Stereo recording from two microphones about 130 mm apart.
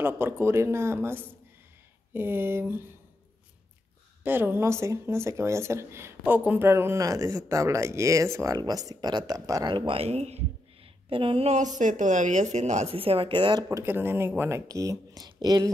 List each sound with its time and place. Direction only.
0.0 s speech: 20° right (ahead or behind)
4.2 s speech: 15° right (ahead or behind); by 10.4 s 55° right (ahead or behind)
11.1 s a sound: 45° right (ahead or behind)
11.8 s speech: 70° right (ahead or behind); by 13.7 s 40° right (ahead or behind)
13.7 s speech: 20° right (ahead or behind)